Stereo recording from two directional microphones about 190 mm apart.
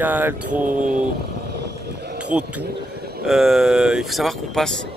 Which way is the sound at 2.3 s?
5° right (ahead or behind).